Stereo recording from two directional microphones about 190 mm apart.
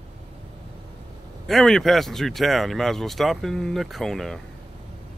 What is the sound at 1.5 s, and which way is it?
Speech, centre (ahead or behind).